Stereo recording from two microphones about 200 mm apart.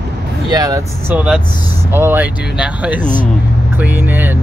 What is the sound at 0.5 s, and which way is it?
Speech, 15° right (ahead or behind).